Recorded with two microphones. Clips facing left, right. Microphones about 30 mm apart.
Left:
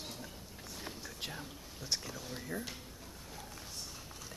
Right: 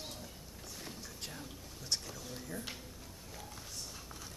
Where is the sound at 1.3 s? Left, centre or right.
Centre.